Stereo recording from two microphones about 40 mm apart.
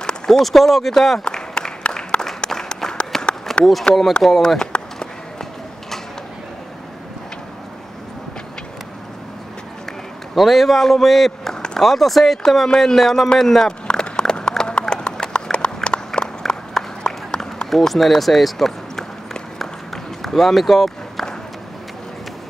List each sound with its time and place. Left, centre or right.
0.3 s a man's voice: centre
1.2 s a sound: centre
1.8 s applause: left
3.1 s run: centre
3.5 s a sound: centre
3.9 s speech: left
4.2 s speech: centre
4.6 s a sound: centre
10.3 s a man's voice: centre
13.4 s run: centre
17.6 s speech: centre
19.6 s run: centre